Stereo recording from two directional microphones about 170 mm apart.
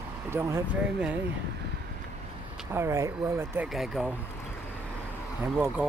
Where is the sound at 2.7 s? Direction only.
15° right (ahead or behind).